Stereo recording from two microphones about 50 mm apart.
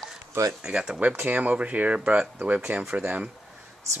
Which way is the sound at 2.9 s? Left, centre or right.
Right.